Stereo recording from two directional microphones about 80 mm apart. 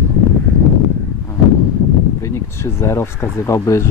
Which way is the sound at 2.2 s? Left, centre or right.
Left.